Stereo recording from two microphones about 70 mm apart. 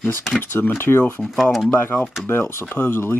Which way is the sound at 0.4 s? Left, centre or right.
Left.